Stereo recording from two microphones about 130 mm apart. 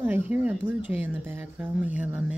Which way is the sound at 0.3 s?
10° right (ahead or behind).